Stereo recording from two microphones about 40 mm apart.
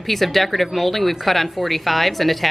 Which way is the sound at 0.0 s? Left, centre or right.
Centre.